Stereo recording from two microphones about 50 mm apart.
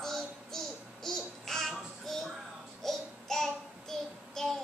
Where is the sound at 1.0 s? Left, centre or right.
Centre.